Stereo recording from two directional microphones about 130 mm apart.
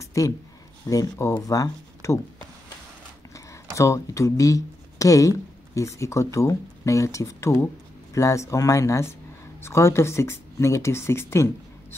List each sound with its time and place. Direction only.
0.0 s a sound: 25° left (ahead or behind)
0.8 s speech: 25° left (ahead or behind)
3.3 s speech: 25° left (ahead or behind)